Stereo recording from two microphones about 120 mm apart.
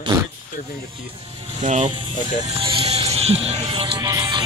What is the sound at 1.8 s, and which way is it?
Speech, 40° right (ahead or behind).